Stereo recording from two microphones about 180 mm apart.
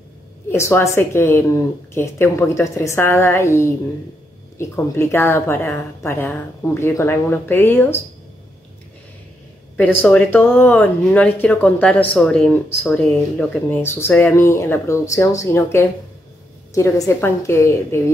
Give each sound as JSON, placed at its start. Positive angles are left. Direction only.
{"t": 0.5, "sound": "a woman's voice", "side_deg": 15}
{"t": 10.0, "sound": "a woman's voice", "side_deg": 10}